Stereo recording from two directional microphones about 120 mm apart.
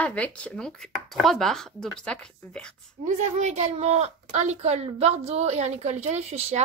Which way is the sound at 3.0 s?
75° right (ahead or behind).